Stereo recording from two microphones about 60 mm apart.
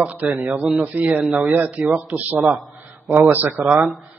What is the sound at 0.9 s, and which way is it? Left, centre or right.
Speech, right.